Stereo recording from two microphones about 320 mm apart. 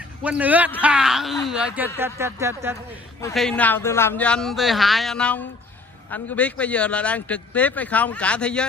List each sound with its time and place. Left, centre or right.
0.2 s a man's voice: centre
3.2 s a man's voice: centre